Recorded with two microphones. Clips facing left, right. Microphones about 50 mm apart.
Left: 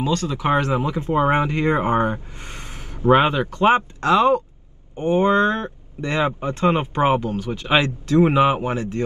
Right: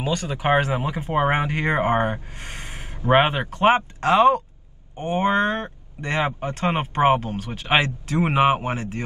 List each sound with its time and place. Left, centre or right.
0.1 s speech: right
0.7 s speech: right